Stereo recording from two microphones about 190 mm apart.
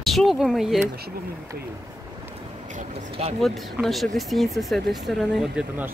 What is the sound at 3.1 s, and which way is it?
Speech, 30° right (ahead or behind).